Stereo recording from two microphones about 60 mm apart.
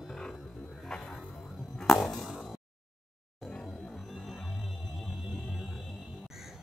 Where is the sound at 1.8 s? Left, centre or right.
Centre.